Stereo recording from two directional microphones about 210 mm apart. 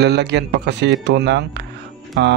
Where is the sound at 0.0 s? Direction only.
55° right (ahead or behind).